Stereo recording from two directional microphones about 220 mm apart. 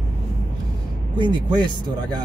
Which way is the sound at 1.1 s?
20° right (ahead or behind).